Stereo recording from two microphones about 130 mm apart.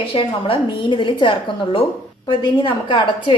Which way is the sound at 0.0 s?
45° left (ahead or behind).